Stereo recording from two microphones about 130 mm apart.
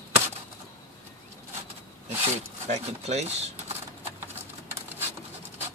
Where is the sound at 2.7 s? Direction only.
60° right (ahead or behind).